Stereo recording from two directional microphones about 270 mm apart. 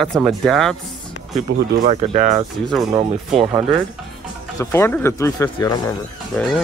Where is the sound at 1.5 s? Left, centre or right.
Right.